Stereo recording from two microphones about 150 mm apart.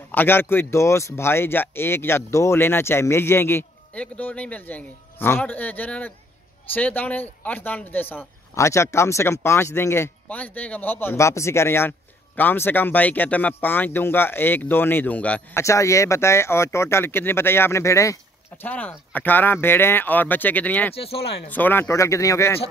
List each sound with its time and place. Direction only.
0.1 s speech: 15° left (ahead or behind)
15.6 s speech: 20° left (ahead or behind)
20.9 s speech: 40° left (ahead or behind)
21.5 s speech: 10° left (ahead or behind)